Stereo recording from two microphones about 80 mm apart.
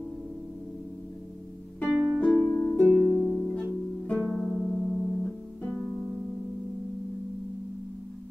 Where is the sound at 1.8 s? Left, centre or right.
Centre.